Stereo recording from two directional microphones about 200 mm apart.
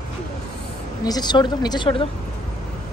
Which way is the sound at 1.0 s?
20° left (ahead or behind).